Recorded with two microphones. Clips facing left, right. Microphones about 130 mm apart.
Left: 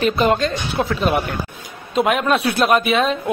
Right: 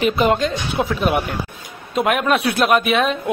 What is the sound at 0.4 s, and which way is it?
A man's voice, 10° right (ahead or behind).